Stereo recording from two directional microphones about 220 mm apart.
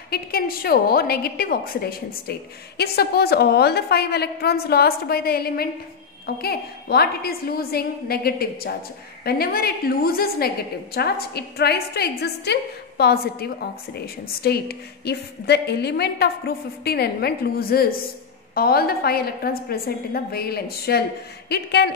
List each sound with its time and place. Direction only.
0.1 s a woman's voice: 45° left (ahead or behind)